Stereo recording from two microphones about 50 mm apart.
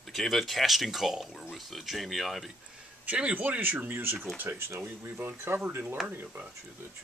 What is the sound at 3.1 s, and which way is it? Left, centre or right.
Speech, right.